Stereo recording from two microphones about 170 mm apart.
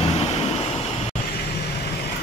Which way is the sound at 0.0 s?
40° left (ahead or behind).